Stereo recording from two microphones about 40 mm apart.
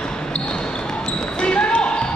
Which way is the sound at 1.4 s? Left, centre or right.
Left.